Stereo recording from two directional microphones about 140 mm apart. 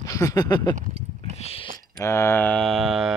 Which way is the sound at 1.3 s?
45° left (ahead or behind).